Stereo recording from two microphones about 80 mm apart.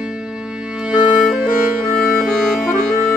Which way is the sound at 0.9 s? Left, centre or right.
Centre.